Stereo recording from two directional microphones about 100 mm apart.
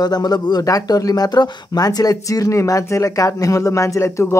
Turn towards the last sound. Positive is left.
turn(degrees=30)  # may be behind; listen again after turning